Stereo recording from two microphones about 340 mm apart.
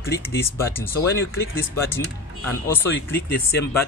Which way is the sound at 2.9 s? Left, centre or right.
Left.